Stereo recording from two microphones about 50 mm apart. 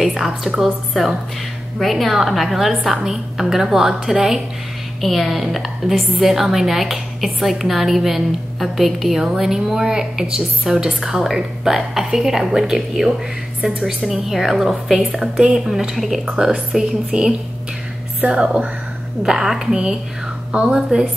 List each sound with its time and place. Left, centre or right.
0.0 s a woman's voice: centre
13.6 s a woman's voice: centre
13.8 s a woman's voice: centre
18.2 s speech: right
19.2 s a woman's voice: centre